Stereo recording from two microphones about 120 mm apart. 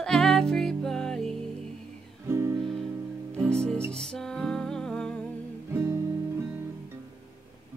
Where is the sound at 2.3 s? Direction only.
20° right (ahead or behind).